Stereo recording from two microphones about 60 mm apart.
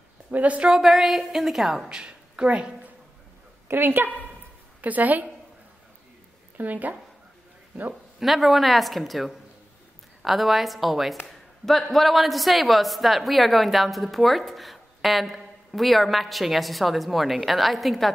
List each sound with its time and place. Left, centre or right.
0.3 s a woman's voice: right
0.7 s a woman's voice: centre
3.6 s a woman's voice: right
6.6 s a woman's voice: right
8.2 s a woman's voice: centre
11.2 s a sound: centre
11.9 s a woman's voice: centre